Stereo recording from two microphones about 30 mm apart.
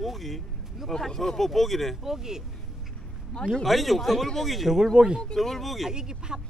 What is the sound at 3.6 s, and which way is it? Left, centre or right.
Speech, centre.